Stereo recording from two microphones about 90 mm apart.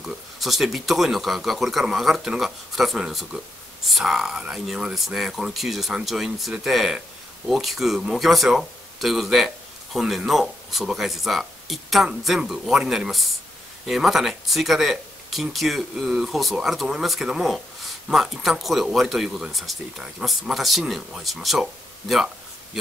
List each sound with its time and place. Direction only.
0.0 s speech: centre (ahead or behind)